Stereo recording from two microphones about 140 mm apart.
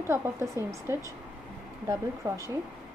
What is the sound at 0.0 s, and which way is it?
Speech, 15° right (ahead or behind).